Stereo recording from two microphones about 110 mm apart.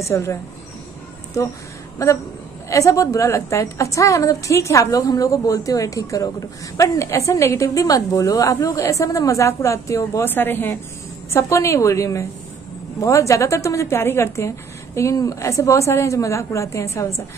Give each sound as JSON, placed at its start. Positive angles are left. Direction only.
{"t": 0.0, "sound": "a woman's voice", "side_deg": 25}
{"t": 2.0, "sound": "a woman's voice", "side_deg": 30}